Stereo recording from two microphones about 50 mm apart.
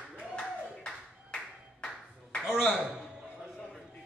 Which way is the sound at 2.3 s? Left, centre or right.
Centre.